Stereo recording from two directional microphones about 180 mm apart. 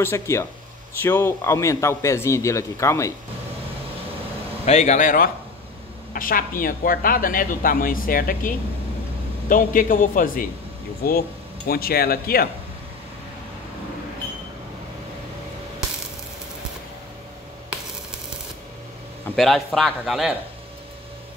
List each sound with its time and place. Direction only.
0.0 s a man's voice: 15° left (ahead or behind)
4.6 s speech: 40° left (ahead or behind); by 12.4 s 55° left (ahead or behind)
19.2 s a man's voice: centre (ahead or behind)